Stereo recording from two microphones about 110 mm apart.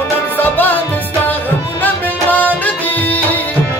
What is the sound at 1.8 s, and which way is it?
Music, 15° left (ahead or behind).